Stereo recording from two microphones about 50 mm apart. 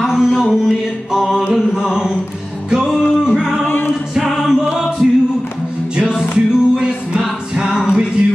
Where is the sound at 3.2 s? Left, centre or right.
Centre.